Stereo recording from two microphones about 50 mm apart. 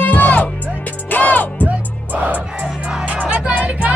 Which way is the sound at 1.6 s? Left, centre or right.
Right.